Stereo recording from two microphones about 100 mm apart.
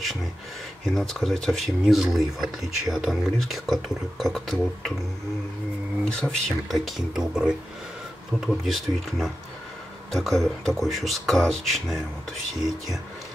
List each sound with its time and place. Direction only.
0.8 s speech: centre (ahead or behind)
6.0 s speech: 5° left (ahead or behind)